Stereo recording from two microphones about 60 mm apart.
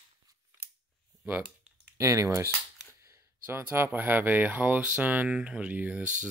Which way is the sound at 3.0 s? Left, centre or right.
Right.